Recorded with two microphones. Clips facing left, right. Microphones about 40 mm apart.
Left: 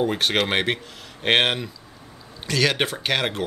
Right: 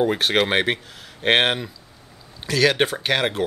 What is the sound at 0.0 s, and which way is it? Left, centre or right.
Speech, centre.